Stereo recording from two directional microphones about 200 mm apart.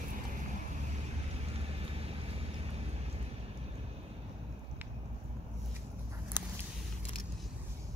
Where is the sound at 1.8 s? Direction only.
30° right (ahead or behind).